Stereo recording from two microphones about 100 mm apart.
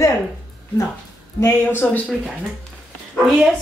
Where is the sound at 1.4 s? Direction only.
20° left (ahead or behind).